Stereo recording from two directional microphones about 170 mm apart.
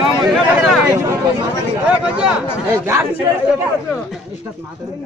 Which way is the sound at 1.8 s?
5° right (ahead or behind).